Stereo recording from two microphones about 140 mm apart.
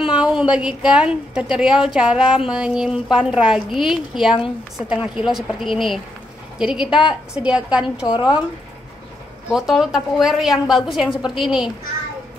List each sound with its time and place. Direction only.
0.1 s a woman's voice: 5° right (ahead or behind)
8.1 s speech: 30° left (ahead or behind)
9.5 s a woman's voice: centre (ahead or behind)